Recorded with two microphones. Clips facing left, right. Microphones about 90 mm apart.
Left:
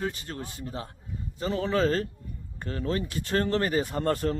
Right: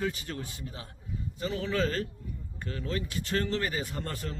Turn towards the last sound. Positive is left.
turn(degrees=45)  # may be behind; listen again after turning